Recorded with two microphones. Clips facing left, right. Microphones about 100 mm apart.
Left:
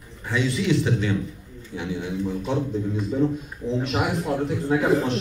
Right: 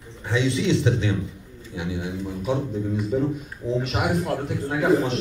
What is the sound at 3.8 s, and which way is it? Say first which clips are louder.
Speech: even; centre (ahead or behind).